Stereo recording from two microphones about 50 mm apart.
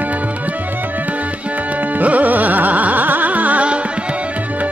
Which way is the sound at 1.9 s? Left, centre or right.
Right.